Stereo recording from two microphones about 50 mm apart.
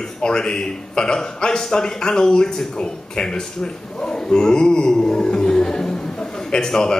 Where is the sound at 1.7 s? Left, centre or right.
Centre.